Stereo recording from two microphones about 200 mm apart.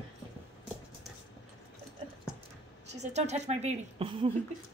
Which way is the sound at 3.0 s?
35° right (ahead or behind).